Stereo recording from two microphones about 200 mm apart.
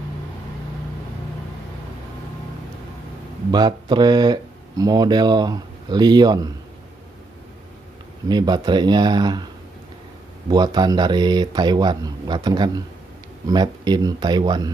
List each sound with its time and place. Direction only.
3.5 s speech: 20° right (ahead or behind)
8.3 s speech: 20° right (ahead or behind)
10.5 s speech: 20° right (ahead or behind)